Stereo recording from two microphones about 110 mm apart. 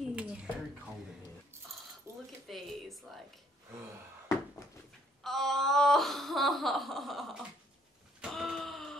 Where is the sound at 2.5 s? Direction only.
Centre (ahead or behind).